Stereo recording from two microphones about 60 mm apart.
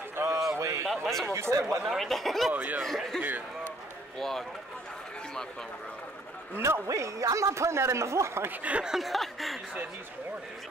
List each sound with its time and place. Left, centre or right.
0.1 s a sound: right
0.8 s a man's voice: centre
1.2 s speech: right
1.5 s a man's voice: right
1.8 s speech: centre
2.5 s speech: right
2.8 s speech: centre
3.2 s speech: right
4.2 s speech: centre
6.9 s a man's voice: right
8.5 s speech: right
8.8 s speech: centre